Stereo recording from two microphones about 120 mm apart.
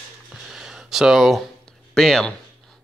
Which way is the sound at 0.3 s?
5° right (ahead or behind).